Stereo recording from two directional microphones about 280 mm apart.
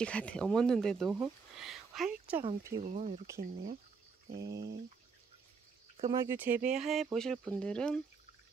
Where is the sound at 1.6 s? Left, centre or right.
Centre.